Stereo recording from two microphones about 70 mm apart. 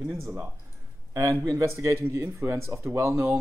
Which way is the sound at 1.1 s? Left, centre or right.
Right.